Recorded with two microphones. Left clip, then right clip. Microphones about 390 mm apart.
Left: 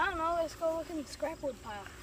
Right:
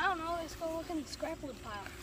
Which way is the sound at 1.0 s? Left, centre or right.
Centre.